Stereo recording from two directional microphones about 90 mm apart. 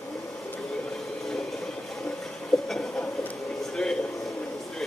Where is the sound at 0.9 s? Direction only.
Centre (ahead or behind).